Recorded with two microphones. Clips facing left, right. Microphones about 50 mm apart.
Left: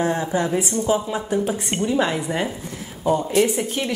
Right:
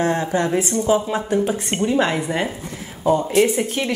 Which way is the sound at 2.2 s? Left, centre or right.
Right.